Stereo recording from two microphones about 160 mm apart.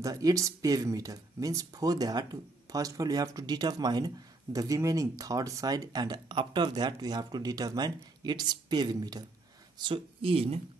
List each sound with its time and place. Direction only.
0.0 s speech: 20° right (ahead or behind); by 10.6 s 40° right (ahead or behind)